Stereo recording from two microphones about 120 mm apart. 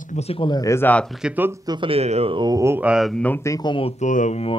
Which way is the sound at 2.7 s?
10° right (ahead or behind).